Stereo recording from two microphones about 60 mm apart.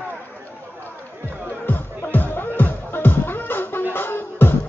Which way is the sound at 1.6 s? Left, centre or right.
Left.